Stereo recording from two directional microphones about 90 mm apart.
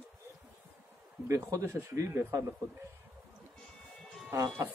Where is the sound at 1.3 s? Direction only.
35° right (ahead or behind).